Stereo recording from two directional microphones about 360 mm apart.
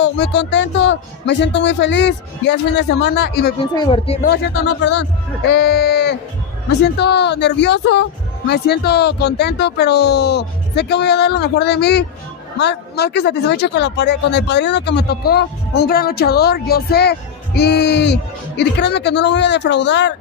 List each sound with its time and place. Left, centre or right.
0.0 s speech: left
3.7 s speech: centre
4.3 s speech: left